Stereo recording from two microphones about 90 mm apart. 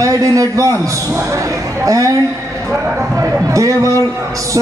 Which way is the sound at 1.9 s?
40° right (ahead or behind).